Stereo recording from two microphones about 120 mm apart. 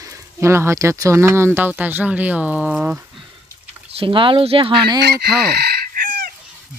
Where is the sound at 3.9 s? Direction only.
45° right (ahead or behind).